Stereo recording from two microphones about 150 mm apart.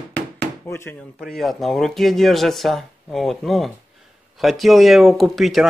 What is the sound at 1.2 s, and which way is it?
Speech, centre (ahead or behind).